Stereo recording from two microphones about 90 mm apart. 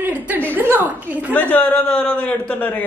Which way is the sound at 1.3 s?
20° left (ahead or behind).